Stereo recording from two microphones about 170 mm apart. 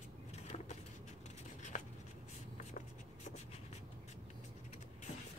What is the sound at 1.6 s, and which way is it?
Writing, 45° left (ahead or behind).